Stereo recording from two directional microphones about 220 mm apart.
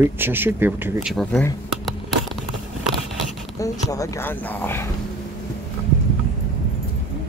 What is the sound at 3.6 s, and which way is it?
Speech, 15° left (ahead or behind).